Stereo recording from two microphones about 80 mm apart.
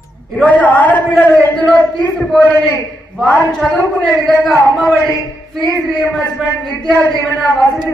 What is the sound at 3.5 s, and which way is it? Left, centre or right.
Speech, centre.